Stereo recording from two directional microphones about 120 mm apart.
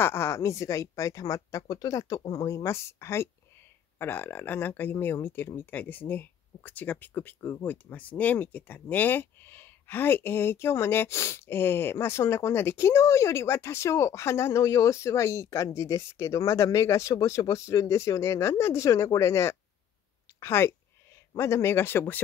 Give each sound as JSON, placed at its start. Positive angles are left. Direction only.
{"t": 0.0, "sound": "a woman's voice", "side_deg": 20}